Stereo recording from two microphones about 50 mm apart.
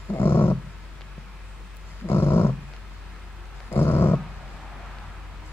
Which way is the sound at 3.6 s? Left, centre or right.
Left.